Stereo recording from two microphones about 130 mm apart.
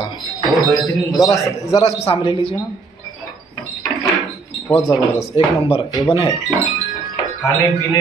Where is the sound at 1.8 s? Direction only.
50° left (ahead or behind).